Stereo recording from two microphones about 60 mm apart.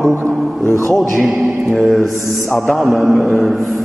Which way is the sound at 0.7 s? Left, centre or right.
Left.